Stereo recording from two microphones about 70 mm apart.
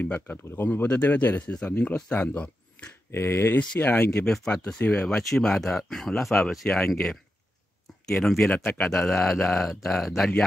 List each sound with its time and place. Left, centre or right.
0.0 s speech: left
3.1 s speech: left
3.5 s speech: left
4.6 s speech: centre